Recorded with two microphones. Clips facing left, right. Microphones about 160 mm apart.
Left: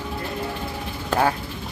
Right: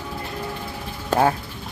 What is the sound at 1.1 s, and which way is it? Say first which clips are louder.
Speech: right 2 dB; 20° right (ahead or behind).